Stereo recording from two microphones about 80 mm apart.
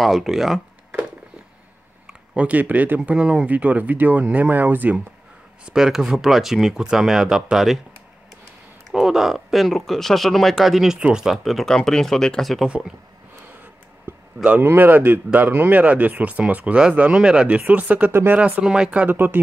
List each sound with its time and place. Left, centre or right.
0.0 s speech: centre
2.0 s speech: centre
5.7 s speech: centre
8.9 s speech: centre
12.6 s speech: centre
14.6 s speech: right
18.4 s speech: centre